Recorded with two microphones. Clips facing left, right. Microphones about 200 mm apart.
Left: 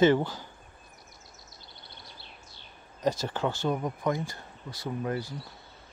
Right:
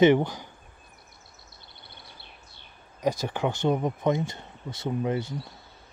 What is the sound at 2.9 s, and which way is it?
Speech, 15° right (ahead or behind).